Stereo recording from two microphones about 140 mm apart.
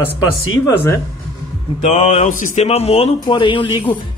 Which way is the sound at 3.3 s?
35° left (ahead or behind).